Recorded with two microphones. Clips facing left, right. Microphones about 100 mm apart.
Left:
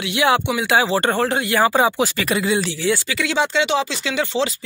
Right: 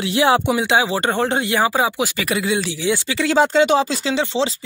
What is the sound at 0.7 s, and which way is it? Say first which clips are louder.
Speech: left 4 dB; 15° right (ahead or behind).